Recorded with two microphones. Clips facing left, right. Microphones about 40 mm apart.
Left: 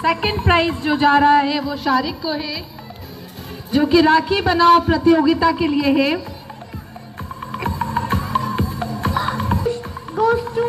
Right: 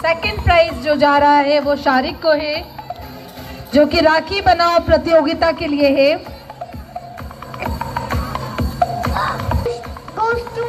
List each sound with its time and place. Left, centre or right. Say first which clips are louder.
0.0 s a woman's voice: right 1 dB; left
1.7 s speech: right 4 dB; centre
3.9 s a woman's voice: even; centre
5.8 s a woman's voice: right 4 dB; left
7.7 s music: left 3 dB; left